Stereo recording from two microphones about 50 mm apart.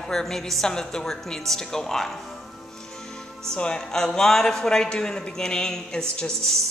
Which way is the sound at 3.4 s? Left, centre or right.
Centre.